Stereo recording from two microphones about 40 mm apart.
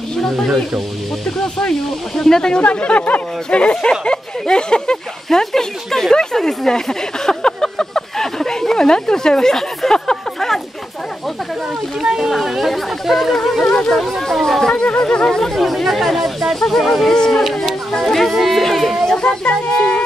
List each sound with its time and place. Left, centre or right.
1.7 s speech: centre
2.6 s speech: left; by 10.6 s centre
12.0 s speech: centre
14.8 s speech: left
15.2 s speech: centre
17.1 s speech: centre
17.4 s speech: centre
19.0 s a sound: centre